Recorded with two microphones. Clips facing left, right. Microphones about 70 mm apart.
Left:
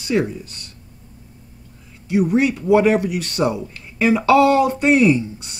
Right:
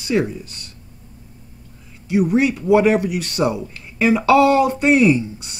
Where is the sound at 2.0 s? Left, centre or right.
Centre.